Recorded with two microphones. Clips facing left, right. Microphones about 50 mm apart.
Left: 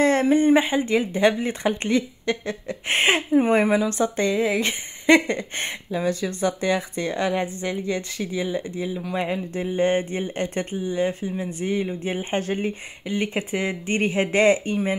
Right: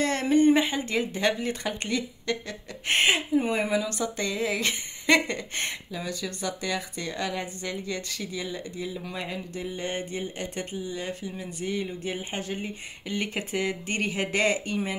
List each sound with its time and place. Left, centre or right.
0.0 s speech: left
3.1 s speech: left
5.9 s speech: left
13.0 s speech: centre